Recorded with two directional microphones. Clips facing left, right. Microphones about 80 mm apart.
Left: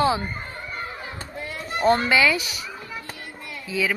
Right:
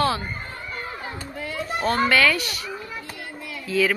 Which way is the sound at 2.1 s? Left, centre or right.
Centre.